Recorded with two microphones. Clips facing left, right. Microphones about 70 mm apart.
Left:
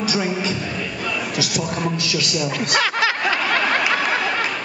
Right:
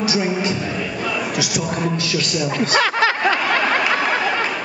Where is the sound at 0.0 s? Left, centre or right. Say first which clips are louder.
Right 2 dB; centre.